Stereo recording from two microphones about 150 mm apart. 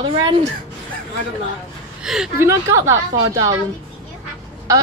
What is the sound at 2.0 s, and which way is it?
Speech, 5° right (ahead or behind).